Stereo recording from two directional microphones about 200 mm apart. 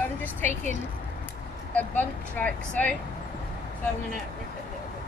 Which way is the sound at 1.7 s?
10° left (ahead or behind).